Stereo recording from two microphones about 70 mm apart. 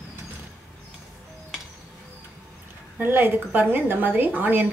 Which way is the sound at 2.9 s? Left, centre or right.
Right.